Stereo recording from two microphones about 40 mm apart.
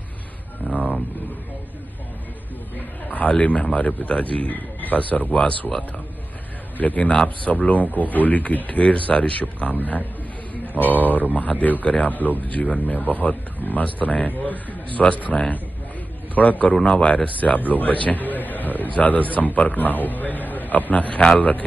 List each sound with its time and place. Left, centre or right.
0.6 s a sound: left
3.1 s a man's voice: left
6.8 s a man's voice: left
10.8 s a man's voice: left